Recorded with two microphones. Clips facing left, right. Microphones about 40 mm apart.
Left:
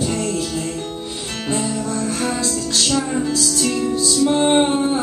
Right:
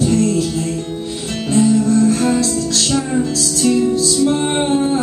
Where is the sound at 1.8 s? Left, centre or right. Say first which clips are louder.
Right 8 dB; centre.